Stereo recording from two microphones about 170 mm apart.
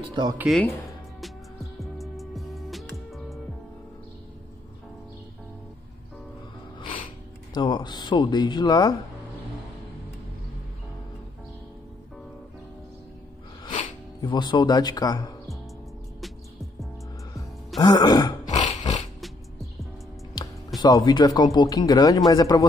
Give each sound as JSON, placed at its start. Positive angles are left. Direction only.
{"t": 0.1, "sound": "speech", "side_deg": -25}
{"t": 1.8, "sound": "music", "side_deg": 0}
{"t": 7.5, "sound": "speech", "side_deg": 25}
{"t": 14.2, "sound": "speech", "side_deg": 25}
{"t": 17.7, "sound": "throat clearing", "side_deg": 25}
{"t": 18.5, "sound": "a sound", "side_deg": 45}
{"t": 19.2, "sound": "music", "side_deg": 0}
{"t": 20.3, "sound": "speech", "side_deg": 25}